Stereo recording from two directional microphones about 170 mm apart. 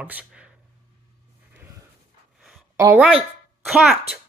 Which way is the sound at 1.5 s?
10° right (ahead or behind).